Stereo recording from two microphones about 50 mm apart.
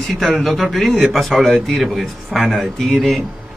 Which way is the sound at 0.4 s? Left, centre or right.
Centre.